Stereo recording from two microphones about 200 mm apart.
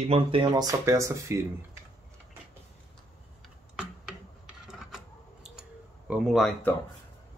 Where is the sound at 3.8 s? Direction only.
5° right (ahead or behind).